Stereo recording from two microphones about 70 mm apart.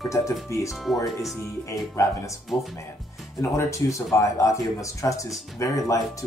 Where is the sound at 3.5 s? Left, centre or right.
Left.